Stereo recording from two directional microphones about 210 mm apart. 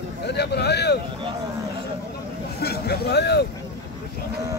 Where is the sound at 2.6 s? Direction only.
50° left (ahead or behind).